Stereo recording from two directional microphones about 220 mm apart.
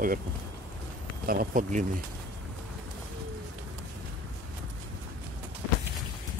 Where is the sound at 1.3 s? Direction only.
40° right (ahead or behind).